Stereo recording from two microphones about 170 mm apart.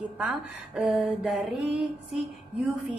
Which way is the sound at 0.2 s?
5° right (ahead or behind).